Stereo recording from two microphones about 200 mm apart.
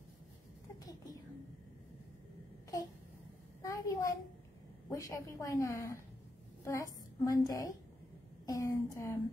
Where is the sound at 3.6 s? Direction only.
15° left (ahead or behind).